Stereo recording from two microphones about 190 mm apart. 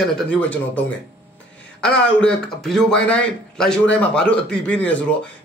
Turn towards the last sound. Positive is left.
turn(degrees=5)  # may be behind; listen again after turning